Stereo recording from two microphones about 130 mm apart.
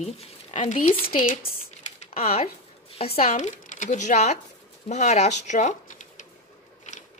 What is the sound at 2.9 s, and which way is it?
A woman's voice, 50° left (ahead or behind).